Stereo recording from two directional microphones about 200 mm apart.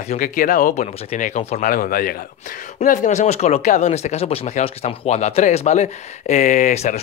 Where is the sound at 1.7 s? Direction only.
45° left (ahead or behind).